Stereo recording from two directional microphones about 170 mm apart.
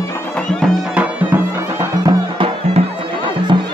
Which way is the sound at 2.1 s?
30° right (ahead or behind).